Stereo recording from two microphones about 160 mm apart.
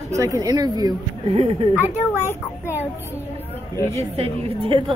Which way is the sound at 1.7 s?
10° right (ahead or behind).